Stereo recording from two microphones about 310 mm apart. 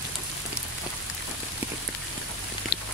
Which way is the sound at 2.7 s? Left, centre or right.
Left.